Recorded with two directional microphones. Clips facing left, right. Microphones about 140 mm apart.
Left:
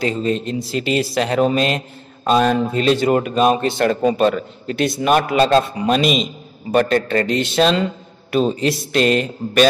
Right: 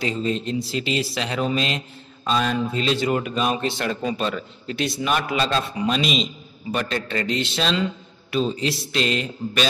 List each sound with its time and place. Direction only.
0.0 s speech: 45° left (ahead or behind)